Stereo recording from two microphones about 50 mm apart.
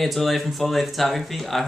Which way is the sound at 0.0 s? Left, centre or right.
Centre.